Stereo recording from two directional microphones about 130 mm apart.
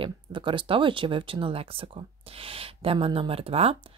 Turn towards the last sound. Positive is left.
turn(degrees=-50)  # may be behind; listen again after turning